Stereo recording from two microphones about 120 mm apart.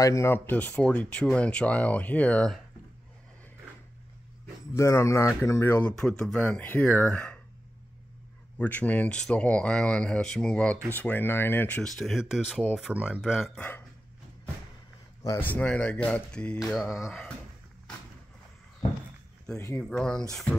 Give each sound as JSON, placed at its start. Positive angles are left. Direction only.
{"t": 0.0, "sound": "speech", "side_deg": 25}
{"t": 4.7, "sound": "speech", "side_deg": 25}
{"t": 5.8, "sound": "speech", "side_deg": 10}
{"t": 8.5, "sound": "speech", "side_deg": 15}
{"t": 11.9, "sound": "speech", "side_deg": 0}
{"t": 13.6, "sound": "speech", "side_deg": 15}
{"t": 15.2, "sound": "speech", "side_deg": 20}
{"t": 16.5, "sound": "speech", "side_deg": 0}
{"t": 19.8, "sound": "speech", "side_deg": 5}